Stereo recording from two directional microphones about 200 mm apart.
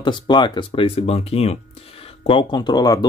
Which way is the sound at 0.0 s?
20° left (ahead or behind).